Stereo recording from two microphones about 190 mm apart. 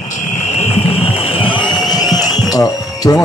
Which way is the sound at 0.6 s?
30° left (ahead or behind).